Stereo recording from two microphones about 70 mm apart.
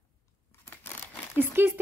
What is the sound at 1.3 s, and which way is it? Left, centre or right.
Speech, right.